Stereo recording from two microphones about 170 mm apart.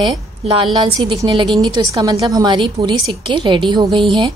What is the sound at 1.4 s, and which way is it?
Speech, centre (ahead or behind).